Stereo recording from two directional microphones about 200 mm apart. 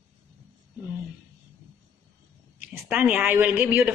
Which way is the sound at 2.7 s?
10° right (ahead or behind).